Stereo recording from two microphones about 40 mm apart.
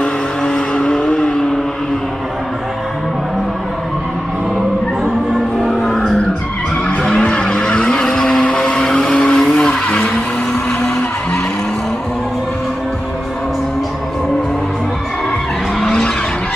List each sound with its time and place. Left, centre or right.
0.4 s vehicle: centre
5.6 s music: centre
7.0 s vehicle: left
9.7 s vehicle: left